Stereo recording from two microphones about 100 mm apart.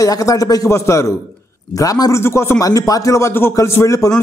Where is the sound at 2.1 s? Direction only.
25° left (ahead or behind).